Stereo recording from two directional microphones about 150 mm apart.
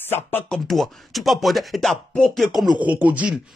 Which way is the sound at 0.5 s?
Centre (ahead or behind).